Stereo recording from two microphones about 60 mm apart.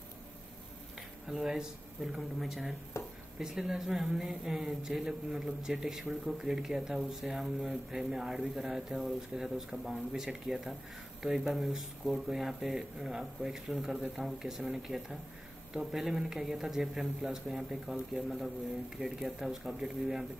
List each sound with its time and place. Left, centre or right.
1.2 s speech: centre
2.9 s a sound: left
3.3 s speech: centre